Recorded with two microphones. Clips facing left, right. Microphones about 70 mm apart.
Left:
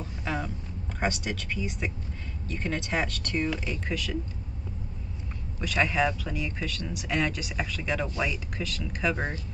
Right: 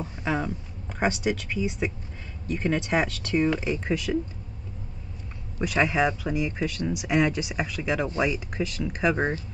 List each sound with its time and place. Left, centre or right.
0.0 s a sound: centre
0.9 s speech: centre
5.6 s speech: centre